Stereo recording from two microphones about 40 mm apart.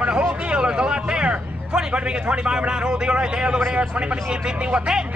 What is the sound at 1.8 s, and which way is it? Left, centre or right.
A man's voice, centre.